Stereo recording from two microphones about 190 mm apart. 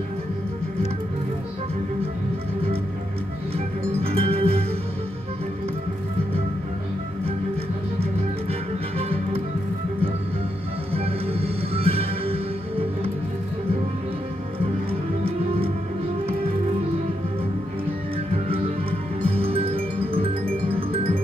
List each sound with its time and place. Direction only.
3.5 s music: 30° right (ahead or behind)
8.0 s music: 30° right (ahead or behind)
10.9 s music: 30° right (ahead or behind)
14.6 s music: 30° right (ahead or behind)
18.3 s music: 30° right (ahead or behind)